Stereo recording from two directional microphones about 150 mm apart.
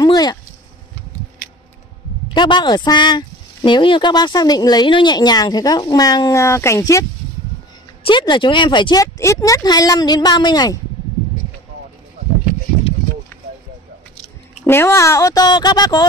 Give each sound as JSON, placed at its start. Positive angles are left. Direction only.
{"t": 0.0, "sound": "a sound", "side_deg": 25}
{"t": 2.3, "sound": "speech", "side_deg": 30}
{"t": 8.0, "sound": "speech", "side_deg": 35}
{"t": 14.6, "sound": "speech", "side_deg": 15}